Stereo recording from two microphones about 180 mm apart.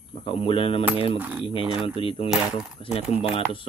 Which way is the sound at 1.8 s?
30° left (ahead or behind).